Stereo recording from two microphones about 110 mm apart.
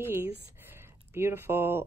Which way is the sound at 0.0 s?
20° right (ahead or behind).